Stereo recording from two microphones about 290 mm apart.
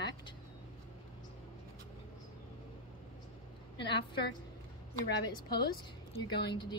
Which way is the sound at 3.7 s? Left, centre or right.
Centre.